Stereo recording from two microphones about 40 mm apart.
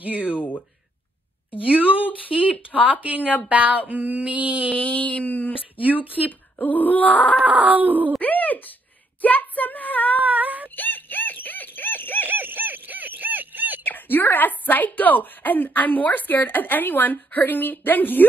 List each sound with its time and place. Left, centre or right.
0.4 s a woman's voice: left
1.6 s a sound: right
4.7 s a woman's voice: left
7.4 s a sound: right
8.2 s a woman's voice: left
10.2 s child singing: right
10.8 s music: left
12.3 s a sound: right
13.8 s a woman's voice: left